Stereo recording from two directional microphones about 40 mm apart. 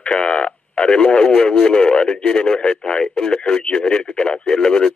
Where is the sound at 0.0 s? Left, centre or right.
Left.